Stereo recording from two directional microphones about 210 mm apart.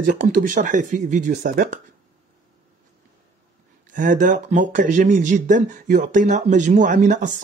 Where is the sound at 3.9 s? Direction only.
40° right (ahead or behind).